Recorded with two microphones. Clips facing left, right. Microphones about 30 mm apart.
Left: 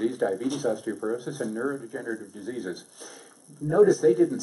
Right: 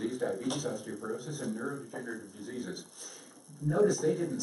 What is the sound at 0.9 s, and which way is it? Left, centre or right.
Speech, left.